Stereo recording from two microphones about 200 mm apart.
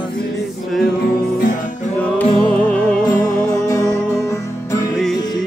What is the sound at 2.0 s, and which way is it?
Music, 5° left (ahead or behind).